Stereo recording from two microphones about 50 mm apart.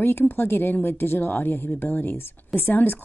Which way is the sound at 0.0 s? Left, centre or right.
Left.